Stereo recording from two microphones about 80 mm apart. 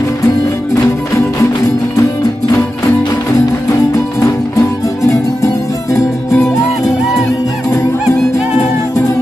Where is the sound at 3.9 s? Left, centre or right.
Left.